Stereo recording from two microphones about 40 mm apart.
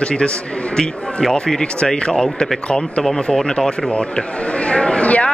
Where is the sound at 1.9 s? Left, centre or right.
Centre.